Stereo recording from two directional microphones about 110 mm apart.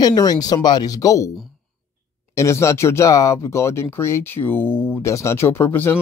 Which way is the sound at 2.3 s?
25° left (ahead or behind).